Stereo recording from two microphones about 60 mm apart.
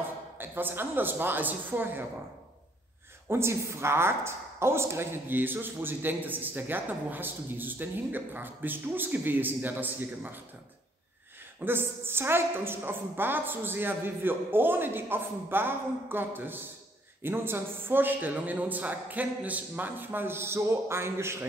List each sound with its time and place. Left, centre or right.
0.4 s a woman's voice: right
3.3 s a woman's voice: right
11.6 s a woman's voice: right